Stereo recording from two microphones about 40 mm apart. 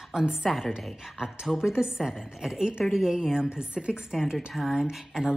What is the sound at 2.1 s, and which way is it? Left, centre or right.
A woman's voice, centre.